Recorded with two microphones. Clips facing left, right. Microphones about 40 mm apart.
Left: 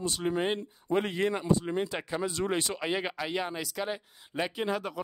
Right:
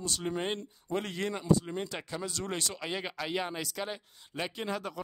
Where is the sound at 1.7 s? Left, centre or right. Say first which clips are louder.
Left 5 dB; centre.